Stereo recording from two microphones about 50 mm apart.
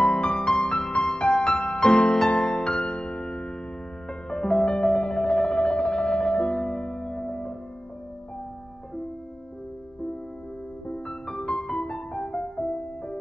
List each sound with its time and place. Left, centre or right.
0.0 s music: centre
10.9 s music: centre